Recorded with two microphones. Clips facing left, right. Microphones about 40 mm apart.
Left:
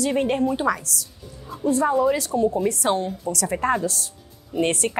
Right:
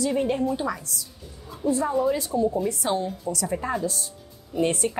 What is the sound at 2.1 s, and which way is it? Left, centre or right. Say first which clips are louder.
A woman's voice: left 3 dB; left.